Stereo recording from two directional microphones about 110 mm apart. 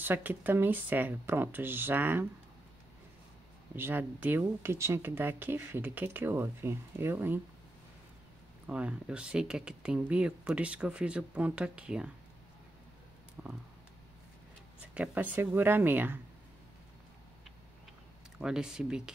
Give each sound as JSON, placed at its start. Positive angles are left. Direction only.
{"t": 0.0, "sound": "speech", "side_deg": -20}
{"t": 3.7, "sound": "speech", "side_deg": -20}
{"t": 8.6, "sound": "speech", "side_deg": -10}
{"t": 13.4, "sound": "a sound", "side_deg": -15}
{"t": 15.0, "sound": "speech", "side_deg": -15}
{"t": 18.4, "sound": "speech", "side_deg": -5}